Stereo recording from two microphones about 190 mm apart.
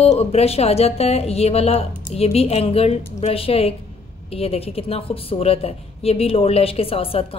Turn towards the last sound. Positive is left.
turn(degrees=30)  # may be behind; listen again after turning